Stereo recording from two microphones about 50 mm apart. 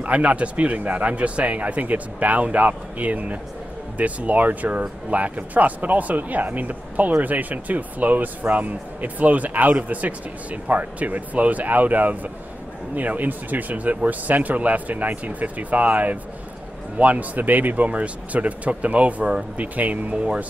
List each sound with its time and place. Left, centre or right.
0.0 s speech: right